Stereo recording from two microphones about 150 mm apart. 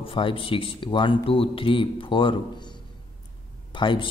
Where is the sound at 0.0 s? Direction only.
35° left (ahead or behind).